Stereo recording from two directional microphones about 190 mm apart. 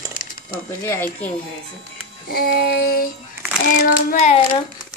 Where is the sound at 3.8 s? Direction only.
40° left (ahead or behind).